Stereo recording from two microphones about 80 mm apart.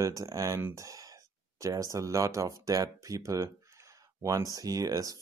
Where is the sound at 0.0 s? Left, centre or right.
Right.